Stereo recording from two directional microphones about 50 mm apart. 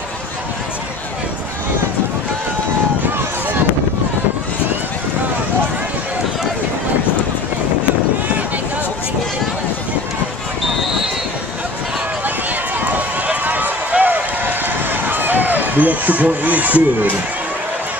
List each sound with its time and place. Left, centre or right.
12.8 s run: right